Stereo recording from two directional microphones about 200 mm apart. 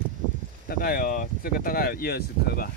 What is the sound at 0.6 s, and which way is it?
Speech, 45° left (ahead or behind).